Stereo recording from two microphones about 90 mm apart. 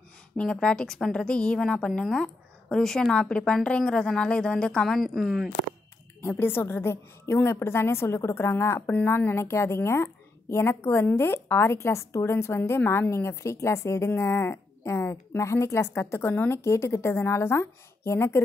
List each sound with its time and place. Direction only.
0.4 s a woman's voice: 10° left (ahead or behind)
6.2 s a woman's voice: 25° left (ahead or behind)